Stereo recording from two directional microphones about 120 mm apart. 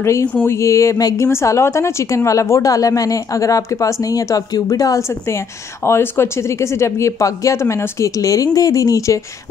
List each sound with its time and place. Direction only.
0.0 s a woman's voice: 25° left (ahead or behind)
0.3 s speech: 10° left (ahead or behind)
0.6 s a woman's voice: 25° left (ahead or behind)